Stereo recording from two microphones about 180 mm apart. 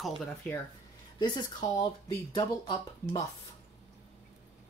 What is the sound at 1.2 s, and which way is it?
Speech, 25° left (ahead or behind).